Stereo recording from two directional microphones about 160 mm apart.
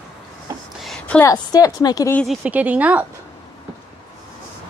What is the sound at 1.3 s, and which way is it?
Speech, 20° left (ahead or behind).